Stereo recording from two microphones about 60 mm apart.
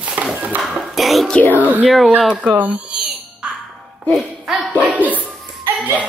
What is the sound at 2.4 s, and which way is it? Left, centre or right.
Speech, right.